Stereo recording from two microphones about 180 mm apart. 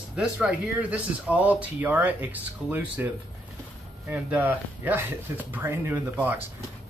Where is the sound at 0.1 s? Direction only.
5° right (ahead or behind).